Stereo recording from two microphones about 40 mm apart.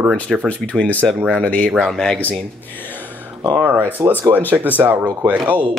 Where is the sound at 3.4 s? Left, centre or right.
Right.